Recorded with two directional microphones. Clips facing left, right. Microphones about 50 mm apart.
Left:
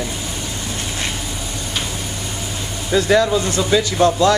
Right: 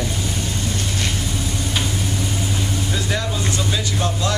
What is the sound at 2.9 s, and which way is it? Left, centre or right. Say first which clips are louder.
Speech: left 9 dB; left.